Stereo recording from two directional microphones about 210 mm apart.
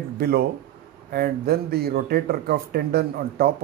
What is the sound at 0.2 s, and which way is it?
Speech, 50° right (ahead or behind).